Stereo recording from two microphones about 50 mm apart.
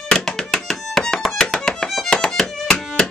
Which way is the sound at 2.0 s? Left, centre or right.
Centre.